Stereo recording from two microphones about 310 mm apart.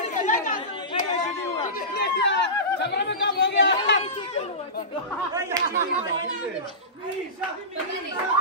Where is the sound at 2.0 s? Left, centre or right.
Left.